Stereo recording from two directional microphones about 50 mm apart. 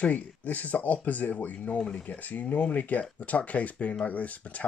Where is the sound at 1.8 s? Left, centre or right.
Centre.